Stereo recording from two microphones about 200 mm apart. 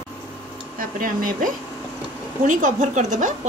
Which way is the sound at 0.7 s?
45° right (ahead or behind).